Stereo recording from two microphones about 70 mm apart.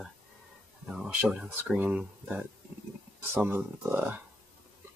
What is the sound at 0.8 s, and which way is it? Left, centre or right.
Speech, centre.